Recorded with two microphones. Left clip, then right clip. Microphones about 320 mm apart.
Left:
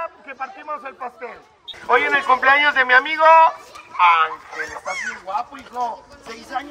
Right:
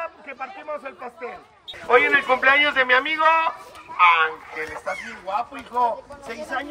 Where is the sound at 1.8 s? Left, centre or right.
Centre.